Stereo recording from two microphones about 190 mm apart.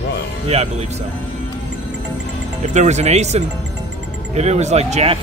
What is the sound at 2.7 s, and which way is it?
Speech, 40° right (ahead or behind).